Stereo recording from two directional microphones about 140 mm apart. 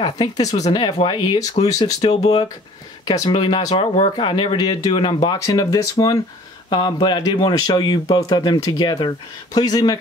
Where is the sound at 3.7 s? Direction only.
50° left (ahead or behind).